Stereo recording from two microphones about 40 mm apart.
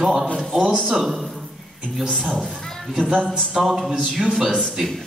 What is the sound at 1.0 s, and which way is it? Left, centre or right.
A woman's voice, centre.